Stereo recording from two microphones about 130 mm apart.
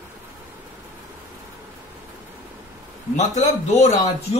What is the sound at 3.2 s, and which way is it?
Speech, 70° left (ahead or behind).